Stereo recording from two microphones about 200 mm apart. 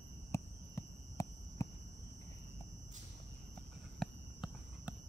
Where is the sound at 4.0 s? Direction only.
Centre (ahead or behind).